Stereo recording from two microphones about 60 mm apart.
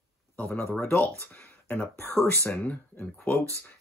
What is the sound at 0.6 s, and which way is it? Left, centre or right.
Speech, left.